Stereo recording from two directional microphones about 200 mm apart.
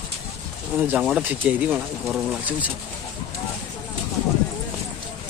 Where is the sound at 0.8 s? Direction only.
5° right (ahead or behind).